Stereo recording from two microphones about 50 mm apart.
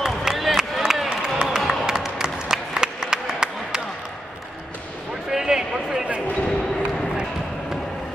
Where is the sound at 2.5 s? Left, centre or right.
Centre.